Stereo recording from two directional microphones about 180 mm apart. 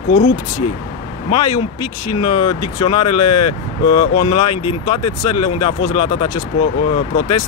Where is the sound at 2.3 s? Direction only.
20° left (ahead or behind).